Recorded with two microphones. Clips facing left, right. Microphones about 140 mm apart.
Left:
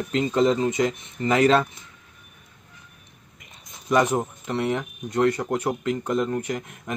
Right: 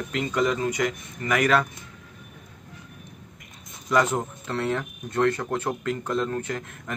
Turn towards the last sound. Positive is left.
turn(degrees=15)  # may be behind; listen again after turning